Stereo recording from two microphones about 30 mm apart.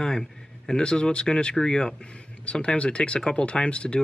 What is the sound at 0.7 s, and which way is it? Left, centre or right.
Speech, left.